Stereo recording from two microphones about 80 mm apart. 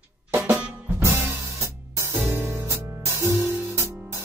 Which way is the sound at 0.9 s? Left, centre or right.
Right.